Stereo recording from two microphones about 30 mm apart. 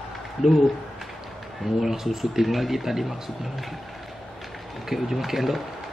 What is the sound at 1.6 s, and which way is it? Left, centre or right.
Speech, centre.